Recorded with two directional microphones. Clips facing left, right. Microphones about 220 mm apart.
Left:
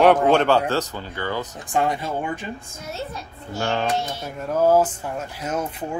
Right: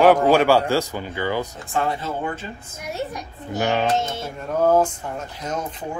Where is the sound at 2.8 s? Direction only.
15° right (ahead or behind).